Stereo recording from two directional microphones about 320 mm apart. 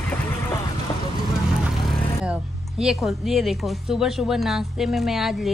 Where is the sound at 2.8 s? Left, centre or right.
Centre.